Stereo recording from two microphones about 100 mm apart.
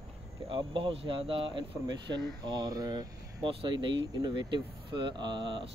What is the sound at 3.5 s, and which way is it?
Speech, 55° right (ahead or behind).